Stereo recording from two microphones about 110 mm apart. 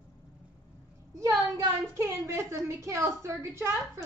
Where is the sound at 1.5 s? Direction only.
30° right (ahead or behind).